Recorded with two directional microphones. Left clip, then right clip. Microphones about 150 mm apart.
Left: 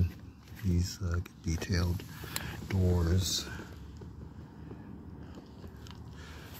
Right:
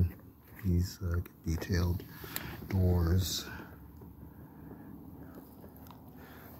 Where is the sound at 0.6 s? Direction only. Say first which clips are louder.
Even; 5° right (ahead or behind).